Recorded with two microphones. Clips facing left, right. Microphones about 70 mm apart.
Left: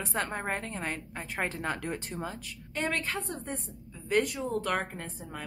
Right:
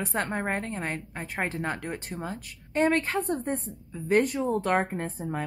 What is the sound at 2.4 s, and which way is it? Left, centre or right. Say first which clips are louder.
A woman's voice: right 9 dB; right.